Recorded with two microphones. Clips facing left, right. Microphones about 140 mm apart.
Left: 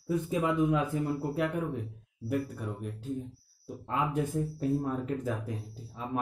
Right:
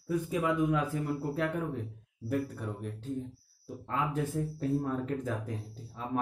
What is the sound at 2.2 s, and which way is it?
Speech, 10° left (ahead or behind).